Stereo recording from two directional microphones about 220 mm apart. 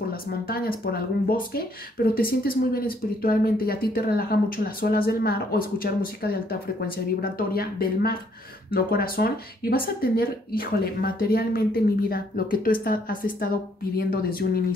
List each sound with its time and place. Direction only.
0.5 s speech: 45° left (ahead or behind)